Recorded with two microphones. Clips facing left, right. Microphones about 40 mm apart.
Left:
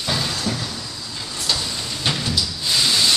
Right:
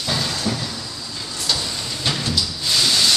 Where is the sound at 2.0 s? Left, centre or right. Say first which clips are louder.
Even; centre.